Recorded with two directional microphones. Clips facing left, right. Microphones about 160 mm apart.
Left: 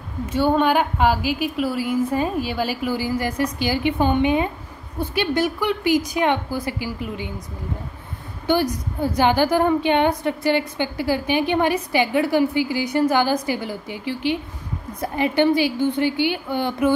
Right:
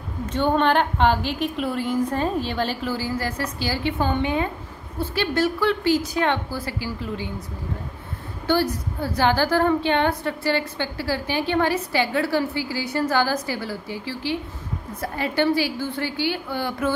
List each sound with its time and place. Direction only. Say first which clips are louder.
0.3 s a woman's voice: left 2 dB; 5° left (ahead or behind)
8.5 s a woman's voice: left 1 dB; 15° left (ahead or behind)